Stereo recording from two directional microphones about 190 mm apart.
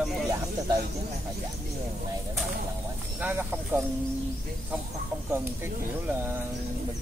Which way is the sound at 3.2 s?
10° right (ahead or behind).